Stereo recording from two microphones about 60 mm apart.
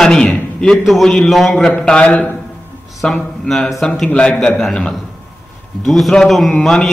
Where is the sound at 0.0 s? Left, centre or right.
Centre.